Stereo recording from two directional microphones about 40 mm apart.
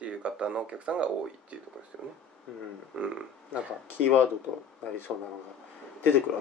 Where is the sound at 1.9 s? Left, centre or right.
Centre.